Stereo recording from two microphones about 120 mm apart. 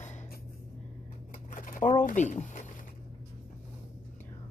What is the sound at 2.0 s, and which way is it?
Speech, 85° left.